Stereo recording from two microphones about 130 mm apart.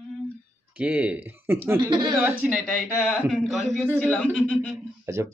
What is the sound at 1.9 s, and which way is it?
Speech, 35° right (ahead or behind).